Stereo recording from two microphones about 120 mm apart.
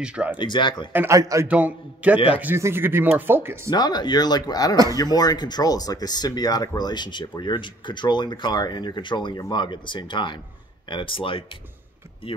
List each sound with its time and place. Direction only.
0.0 s speech: 10° right (ahead or behind)
0.4 s speech: 40° left (ahead or behind)
0.9 s a man's voice: 25° right (ahead or behind)
1.5 s speech: 10° right (ahead or behind)
3.7 s speech: 35° left (ahead or behind)